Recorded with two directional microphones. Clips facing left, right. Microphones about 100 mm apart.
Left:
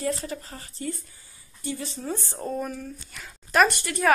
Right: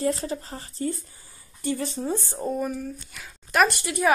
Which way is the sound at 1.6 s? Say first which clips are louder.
Right 5 dB; 55° right (ahead or behind).